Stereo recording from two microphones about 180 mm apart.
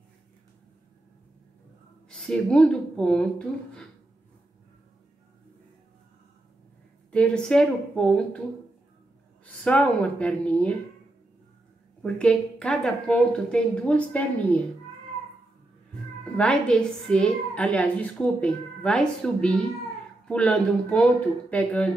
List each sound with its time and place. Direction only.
2.0 s a woman's voice: 5° left (ahead or behind)
7.1 s a woman's voice: 5° left (ahead or behind)
9.7 s speech: 10° left (ahead or behind)
12.0 s a woman's voice: 5° left (ahead or behind)
16.3 s a woman's voice: 5° left (ahead or behind)